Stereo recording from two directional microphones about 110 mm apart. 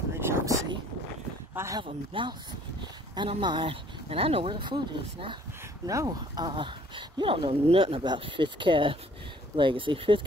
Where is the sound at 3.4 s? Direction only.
50° right (ahead or behind).